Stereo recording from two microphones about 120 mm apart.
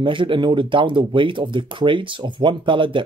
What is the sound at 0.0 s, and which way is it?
Speech, 45° right (ahead or behind).